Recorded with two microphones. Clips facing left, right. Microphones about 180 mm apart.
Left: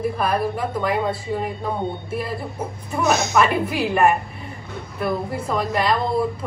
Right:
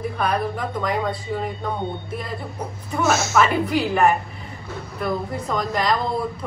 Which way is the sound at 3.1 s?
15° left (ahead or behind).